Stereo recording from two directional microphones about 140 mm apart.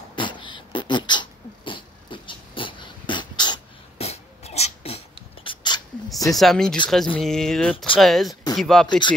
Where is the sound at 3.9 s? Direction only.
50° left (ahead or behind).